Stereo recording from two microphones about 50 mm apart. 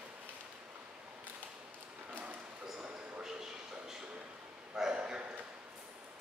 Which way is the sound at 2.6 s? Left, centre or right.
Centre.